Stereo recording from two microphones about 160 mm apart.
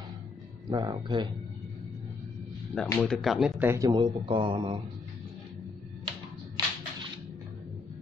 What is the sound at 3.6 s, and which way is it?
Speech, 20° right (ahead or behind).